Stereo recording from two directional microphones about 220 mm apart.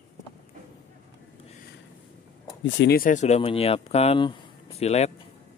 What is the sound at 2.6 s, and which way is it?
Speech, 50° left (ahead or behind).